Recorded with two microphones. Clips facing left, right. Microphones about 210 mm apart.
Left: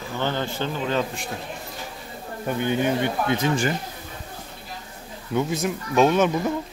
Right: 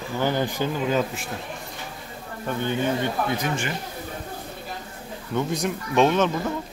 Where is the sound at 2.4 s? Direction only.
15° left (ahead or behind).